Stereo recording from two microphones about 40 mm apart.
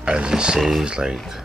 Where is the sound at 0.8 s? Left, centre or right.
Right.